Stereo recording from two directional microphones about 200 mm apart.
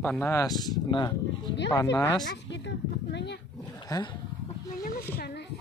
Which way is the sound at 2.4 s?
60° left (ahead or behind).